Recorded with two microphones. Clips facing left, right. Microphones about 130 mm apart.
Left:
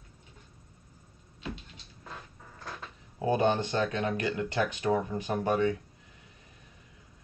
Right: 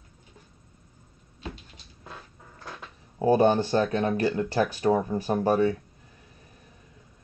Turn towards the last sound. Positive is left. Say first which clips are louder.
# right 5 dB
turn(degrees=-35)  # may be behind; listen again after turning